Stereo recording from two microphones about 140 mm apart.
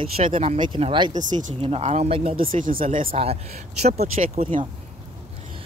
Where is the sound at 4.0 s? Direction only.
80° right.